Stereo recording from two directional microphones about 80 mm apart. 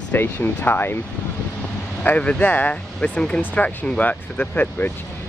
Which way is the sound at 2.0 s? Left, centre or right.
Centre.